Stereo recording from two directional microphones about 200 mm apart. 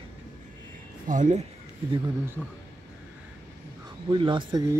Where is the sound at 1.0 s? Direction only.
40° right (ahead or behind).